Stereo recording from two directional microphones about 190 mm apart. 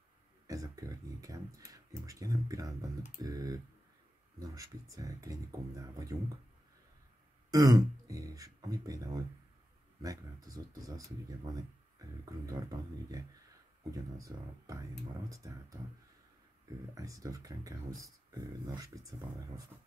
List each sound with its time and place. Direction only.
0.5 s speech: 20° right (ahead or behind)
7.5 s speech: 20° right (ahead or behind)
13.9 s speech: 20° right (ahead or behind)